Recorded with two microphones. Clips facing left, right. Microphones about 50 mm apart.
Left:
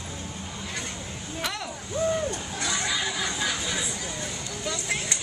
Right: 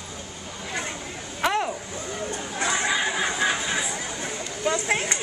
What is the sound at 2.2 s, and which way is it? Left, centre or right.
Chatter, right.